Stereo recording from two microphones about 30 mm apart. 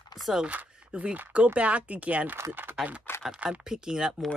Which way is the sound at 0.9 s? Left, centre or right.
Right.